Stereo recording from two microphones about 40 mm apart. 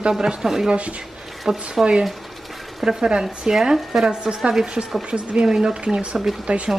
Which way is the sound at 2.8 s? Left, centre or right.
Centre.